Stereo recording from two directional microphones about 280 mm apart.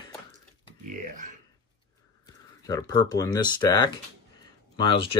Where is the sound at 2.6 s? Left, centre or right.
Centre.